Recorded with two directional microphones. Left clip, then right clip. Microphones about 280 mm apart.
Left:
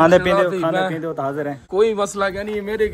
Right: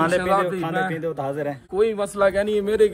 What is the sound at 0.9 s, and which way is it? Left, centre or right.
Speech, centre.